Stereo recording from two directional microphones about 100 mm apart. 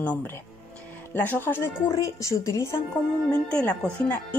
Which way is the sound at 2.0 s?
35° left (ahead or behind).